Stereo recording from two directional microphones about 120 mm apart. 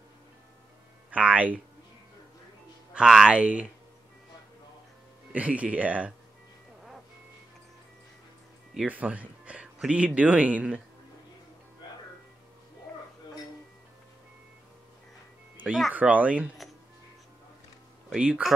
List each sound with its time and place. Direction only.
1.1 s speech: 10° right (ahead or behind)
2.9 s speech: 5° right (ahead or behind)
5.3 s speech: 10° right (ahead or behind)
8.8 s speech: 10° right (ahead or behind)
12.9 s music: 10° left (ahead or behind)
15.5 s speech: 5° right (ahead or behind)
18.1 s speech: 5° right (ahead or behind)